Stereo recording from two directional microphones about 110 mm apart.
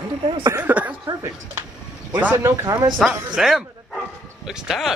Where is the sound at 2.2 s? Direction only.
20° right (ahead or behind).